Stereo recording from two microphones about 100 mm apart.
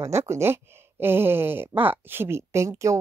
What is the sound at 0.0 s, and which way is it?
Speech, 30° right (ahead or behind).